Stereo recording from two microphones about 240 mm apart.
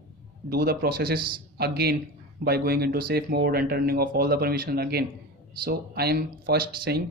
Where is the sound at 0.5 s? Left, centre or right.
Right.